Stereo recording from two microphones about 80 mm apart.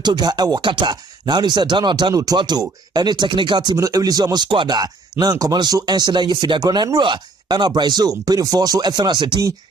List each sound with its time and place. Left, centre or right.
0.0 s speech: right
0.6 s speech: right
2.1 s speech: right
3.7 s speech: right
4.7 s speech: right